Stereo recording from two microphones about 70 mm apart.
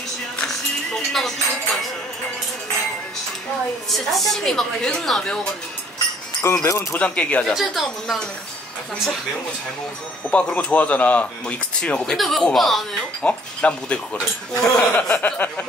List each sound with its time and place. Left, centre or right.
0.5 s music: centre
4.1 s a woman's voice: centre
6.4 s speech: left
7.0 s speech: centre
7.5 s a woman's voice: centre
10.3 s speech: centre
12.2 s a woman's voice: centre
13.2 s speech: centre